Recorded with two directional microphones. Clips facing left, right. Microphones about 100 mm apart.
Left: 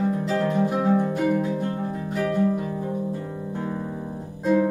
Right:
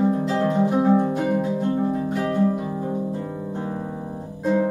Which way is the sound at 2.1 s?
20° right (ahead or behind).